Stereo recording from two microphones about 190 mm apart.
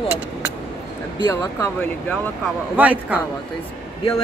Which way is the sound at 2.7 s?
10° right (ahead or behind).